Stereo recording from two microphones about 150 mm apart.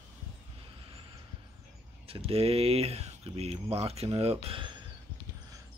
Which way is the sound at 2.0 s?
40° right (ahead or behind).